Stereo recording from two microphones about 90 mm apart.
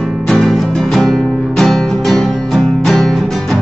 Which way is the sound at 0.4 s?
Centre (ahead or behind).